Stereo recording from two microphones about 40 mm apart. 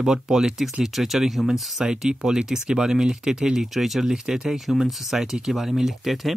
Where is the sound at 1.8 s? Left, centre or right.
Centre.